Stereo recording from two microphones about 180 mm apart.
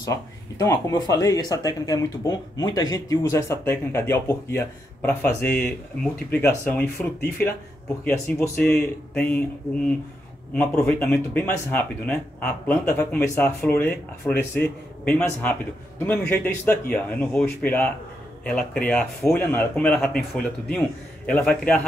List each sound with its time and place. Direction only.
0.0 s speech: 15° left (ahead or behind)